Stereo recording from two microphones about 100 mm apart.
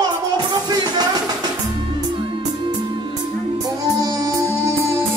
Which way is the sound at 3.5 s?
40° right (ahead or behind).